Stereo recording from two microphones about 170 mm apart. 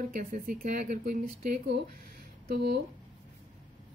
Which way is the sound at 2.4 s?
70° right (ahead or behind).